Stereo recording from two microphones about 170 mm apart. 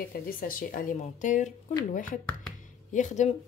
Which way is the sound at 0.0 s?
55° left (ahead or behind).